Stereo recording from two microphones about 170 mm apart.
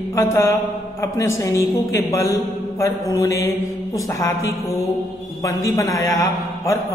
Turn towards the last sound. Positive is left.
turn(degrees=15)  # may be behind; listen again after turning